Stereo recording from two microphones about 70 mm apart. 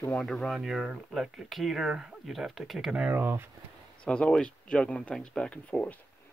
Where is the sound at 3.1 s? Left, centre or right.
Right.